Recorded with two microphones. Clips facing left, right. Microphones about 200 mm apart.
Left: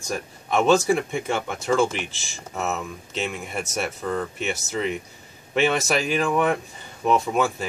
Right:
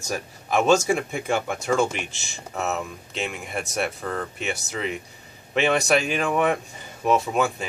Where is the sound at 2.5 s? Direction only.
Centre (ahead or behind).